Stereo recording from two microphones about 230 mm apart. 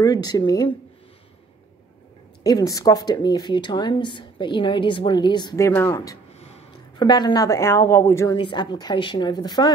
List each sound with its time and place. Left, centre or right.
0.0 s speech: centre
2.4 s a woman's voice: centre